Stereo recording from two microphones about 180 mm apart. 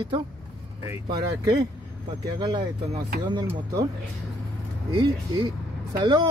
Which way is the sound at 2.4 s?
25° right (ahead or behind).